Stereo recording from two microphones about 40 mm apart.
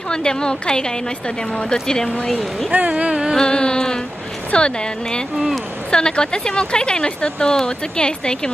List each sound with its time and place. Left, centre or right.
0.1 s speech: centre
2.7 s speech: right
3.1 s music: centre
3.3 s speech: left